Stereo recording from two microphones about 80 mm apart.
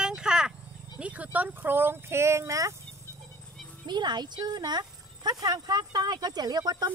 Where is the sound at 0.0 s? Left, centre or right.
Centre.